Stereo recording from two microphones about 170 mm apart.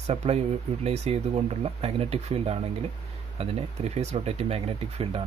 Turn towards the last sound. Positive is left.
turn(degrees=-35)  # may be behind; listen again after turning